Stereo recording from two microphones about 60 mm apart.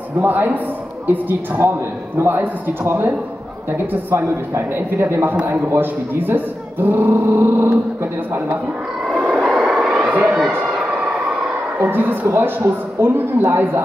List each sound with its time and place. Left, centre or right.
0.2 s speech: right
1.6 s speech: right
3.7 s speech: right
9.1 s vehicle: centre
11.8 s speech: right
12.3 s speech: right
12.5 s speech: right